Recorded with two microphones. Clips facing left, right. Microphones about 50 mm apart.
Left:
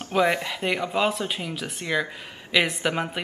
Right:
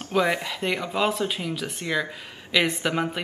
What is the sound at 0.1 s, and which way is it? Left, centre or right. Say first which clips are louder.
Speech: left 1 dB; centre.